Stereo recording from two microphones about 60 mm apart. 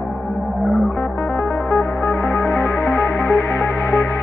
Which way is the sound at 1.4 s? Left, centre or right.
Left.